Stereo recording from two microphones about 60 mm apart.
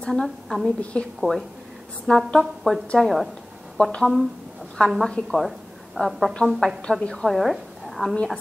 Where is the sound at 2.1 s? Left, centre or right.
Centre.